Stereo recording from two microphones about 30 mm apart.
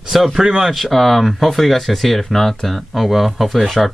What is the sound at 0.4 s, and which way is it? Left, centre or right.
Speech, centre.